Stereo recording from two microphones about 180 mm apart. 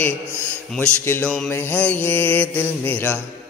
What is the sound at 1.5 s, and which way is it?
Music, 10° left (ahead or behind).